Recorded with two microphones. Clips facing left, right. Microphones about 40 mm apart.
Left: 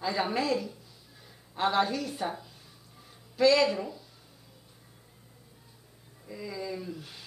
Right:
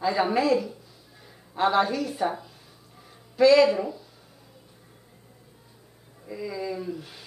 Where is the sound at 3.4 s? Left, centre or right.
Centre.